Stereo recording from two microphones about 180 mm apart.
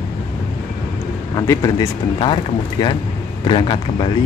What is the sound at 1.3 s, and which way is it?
Speech, 20° left (ahead or behind).